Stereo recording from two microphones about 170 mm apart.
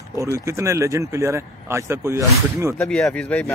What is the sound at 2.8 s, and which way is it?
Speech, 5° left (ahead or behind).